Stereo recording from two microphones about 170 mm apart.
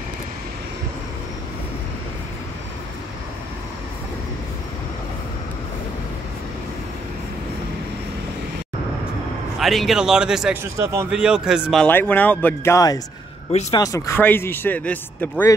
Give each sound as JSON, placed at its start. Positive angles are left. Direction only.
{"t": 9.6, "sound": "speech", "side_deg": 0}
{"t": 10.6, "sound": "a man's voice", "side_deg": -15}
{"t": 11.1, "sound": "speech", "side_deg": -5}
{"t": 11.8, "sound": "speech", "side_deg": 10}
{"t": 13.5, "sound": "speech", "side_deg": 40}
{"t": 13.7, "sound": "speech", "side_deg": 20}